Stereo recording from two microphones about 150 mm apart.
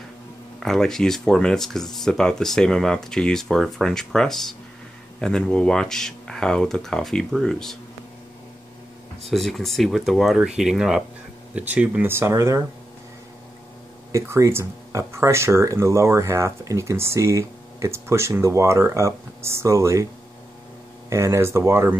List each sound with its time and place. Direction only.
0.6 s speech: 5° left (ahead or behind)
9.2 s speech: centre (ahead or behind); by 12.6 s 20° right (ahead or behind)
14.1 s speech: 20° right (ahead or behind)
21.1 s speech: 15° right (ahead or behind)